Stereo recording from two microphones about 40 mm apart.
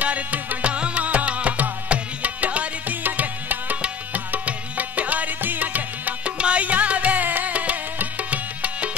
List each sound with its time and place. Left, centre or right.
0.0 s music: right
3.0 s music: right
6.3 s music: right